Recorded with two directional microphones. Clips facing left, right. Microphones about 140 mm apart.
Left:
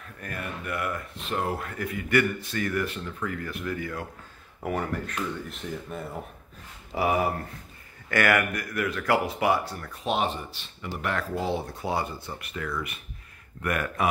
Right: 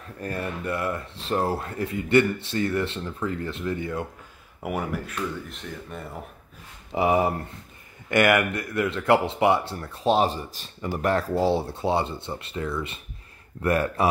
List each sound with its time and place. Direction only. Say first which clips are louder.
0.2 s speech: right 6 dB; 30° right (ahead or behind)
4.6 s speech: even; 10° right (ahead or behind)
7.0 s a man's voice: right 3 dB; 25° right (ahead or behind)